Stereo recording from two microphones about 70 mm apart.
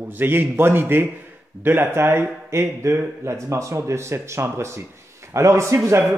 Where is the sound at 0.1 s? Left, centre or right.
Right.